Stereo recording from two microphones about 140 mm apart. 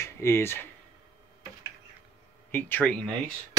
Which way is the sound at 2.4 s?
15° left (ahead or behind).